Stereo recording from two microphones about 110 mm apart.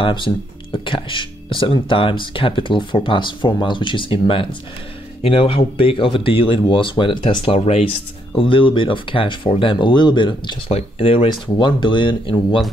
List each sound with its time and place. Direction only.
0.0 s speech: 50° left (ahead or behind)
7.5 s speech: 70° left (ahead or behind)
8.4 s speech: 50° left (ahead or behind)
10.7 s speech: 60° left (ahead or behind)
11.2 s speech: 45° left (ahead or behind)